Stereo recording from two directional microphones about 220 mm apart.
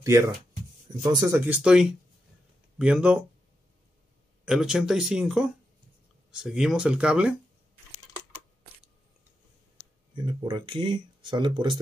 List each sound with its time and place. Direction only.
1.0 s speech: 15° right (ahead or behind)
4.5 s speech: centre (ahead or behind)
10.1 s speech: 20° right (ahead or behind)